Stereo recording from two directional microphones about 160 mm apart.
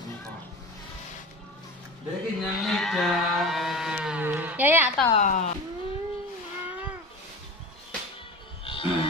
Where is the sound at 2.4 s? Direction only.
Centre (ahead or behind).